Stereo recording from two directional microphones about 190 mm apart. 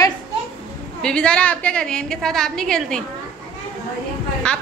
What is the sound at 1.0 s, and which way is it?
A woman's voice, 5° left (ahead or behind).